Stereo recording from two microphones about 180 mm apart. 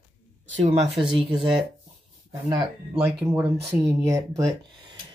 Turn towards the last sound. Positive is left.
turn(degrees=-20)  # may be behind; listen again after turning